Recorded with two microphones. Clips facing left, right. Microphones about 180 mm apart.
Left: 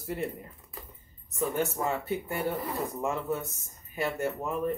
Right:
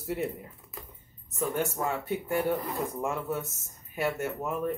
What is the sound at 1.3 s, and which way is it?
Speech, centre (ahead or behind).